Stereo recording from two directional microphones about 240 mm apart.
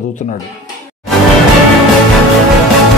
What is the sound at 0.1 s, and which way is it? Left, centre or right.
Speech, left.